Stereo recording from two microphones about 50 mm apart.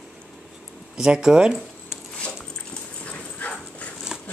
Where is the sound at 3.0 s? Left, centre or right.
Left.